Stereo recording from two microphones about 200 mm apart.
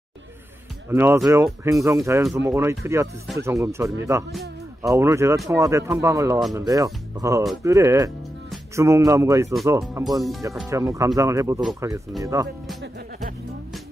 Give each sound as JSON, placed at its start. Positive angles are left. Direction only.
{"t": 0.8, "sound": "speech", "side_deg": -10}
{"t": 4.3, "sound": "speech", "side_deg": 0}
{"t": 4.9, "sound": "speech", "side_deg": -15}